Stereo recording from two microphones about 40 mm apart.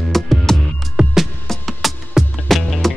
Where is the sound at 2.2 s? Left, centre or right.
Centre.